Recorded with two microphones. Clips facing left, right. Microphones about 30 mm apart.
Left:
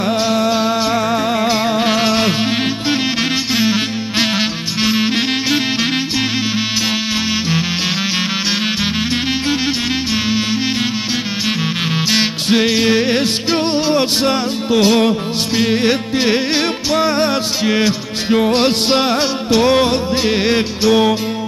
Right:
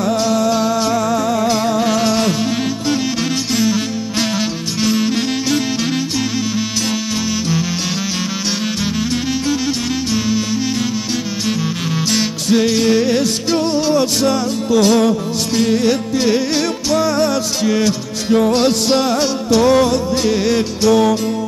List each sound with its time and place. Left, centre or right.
0.0 s music: left
3.5 s music: left
12.1 s music: left